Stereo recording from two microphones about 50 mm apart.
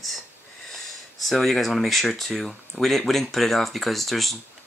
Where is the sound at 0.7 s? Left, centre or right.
Centre.